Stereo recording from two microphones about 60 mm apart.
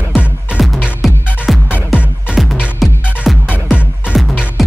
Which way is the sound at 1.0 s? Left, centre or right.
Centre.